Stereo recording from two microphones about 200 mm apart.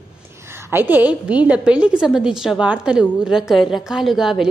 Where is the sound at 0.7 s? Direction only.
10° right (ahead or behind).